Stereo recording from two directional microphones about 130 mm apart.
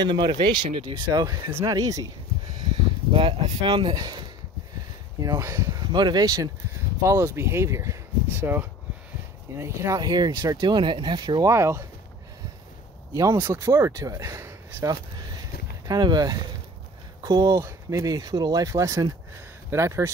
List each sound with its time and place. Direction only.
0.0 s speech: 35° right (ahead or behind)
0.8 s speech: 30° right (ahead or behind)
3.1 s speech: 45° right (ahead or behind)
11.5 s speech: 20° right (ahead or behind)
13.1 s speech: 25° right (ahead or behind)